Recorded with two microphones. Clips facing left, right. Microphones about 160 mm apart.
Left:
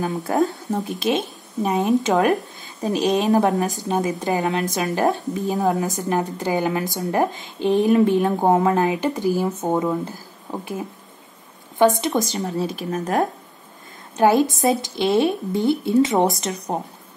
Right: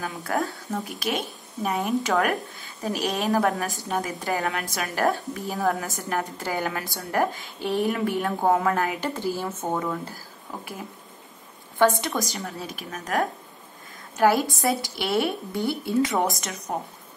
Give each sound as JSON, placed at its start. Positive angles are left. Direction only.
{"t": 0.2, "sound": "a woman's voice", "side_deg": 20}
{"t": 11.8, "sound": "a woman's voice", "side_deg": 20}